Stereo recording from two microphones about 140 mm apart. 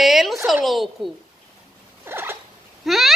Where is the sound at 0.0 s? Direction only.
Centre (ahead or behind).